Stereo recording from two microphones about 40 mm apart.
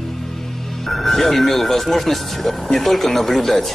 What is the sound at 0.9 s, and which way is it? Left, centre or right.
Music, centre.